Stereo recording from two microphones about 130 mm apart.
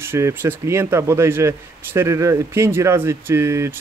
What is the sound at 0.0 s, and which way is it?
Speech, 20° right (ahead or behind).